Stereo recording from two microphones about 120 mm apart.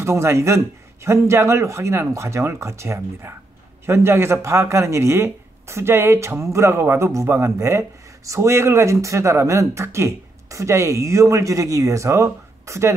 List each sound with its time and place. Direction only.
0.0 s speech: 25° right (ahead or behind)